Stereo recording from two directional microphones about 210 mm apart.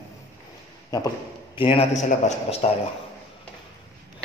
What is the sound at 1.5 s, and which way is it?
A man's voice, 25° left (ahead or behind).